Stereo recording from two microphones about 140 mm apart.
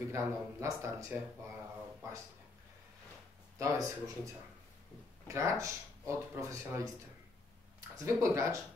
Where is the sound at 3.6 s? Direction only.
25° right (ahead or behind).